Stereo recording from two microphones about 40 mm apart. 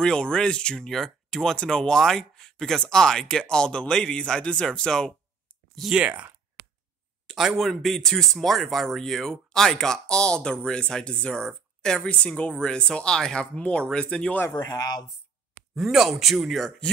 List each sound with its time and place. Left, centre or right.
0.0 s speech: left
0.7 s speech: centre
6.0 s speech: right
7.2 s a sound: centre
7.8 s speech: centre
12.1 s speech: left
13.6 s speech: left
15.7 s speech: centre